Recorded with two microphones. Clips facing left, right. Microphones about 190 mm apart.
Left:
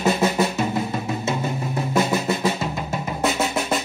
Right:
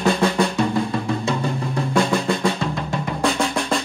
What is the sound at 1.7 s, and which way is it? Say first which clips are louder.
Drum: right 1 dB; 5° left (ahead or behind).